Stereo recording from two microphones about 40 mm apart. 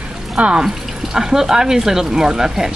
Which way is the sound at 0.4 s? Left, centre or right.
Right.